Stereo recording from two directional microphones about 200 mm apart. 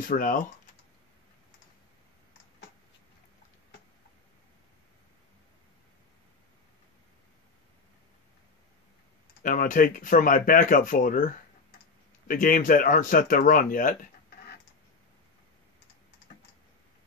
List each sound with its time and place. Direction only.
0.1 s speech: 40° left (ahead or behind)
9.4 s speech: 40° left (ahead or behind)